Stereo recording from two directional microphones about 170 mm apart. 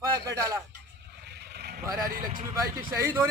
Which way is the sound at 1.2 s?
75° right (ahead or behind).